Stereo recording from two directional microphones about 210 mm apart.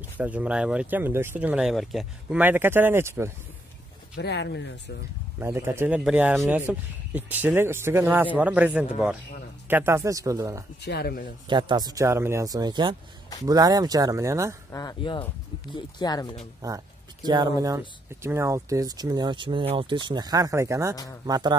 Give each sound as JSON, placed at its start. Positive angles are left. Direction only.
{"t": 0.2, "sound": "speech", "side_deg": -5}
{"t": 4.2, "sound": "speech", "side_deg": 55}
{"t": 5.4, "sound": "speech", "side_deg": -10}
{"t": 10.8, "sound": "speech", "side_deg": 50}
{"t": 11.4, "sound": "speech", "side_deg": -20}
{"t": 14.7, "sound": "speech", "side_deg": 15}
{"t": 16.6, "sound": "speech", "side_deg": -20}